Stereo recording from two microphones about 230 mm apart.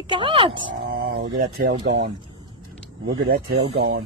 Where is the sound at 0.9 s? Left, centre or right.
Right.